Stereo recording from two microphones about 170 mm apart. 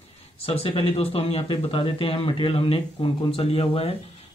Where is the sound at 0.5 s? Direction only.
35° left (ahead or behind).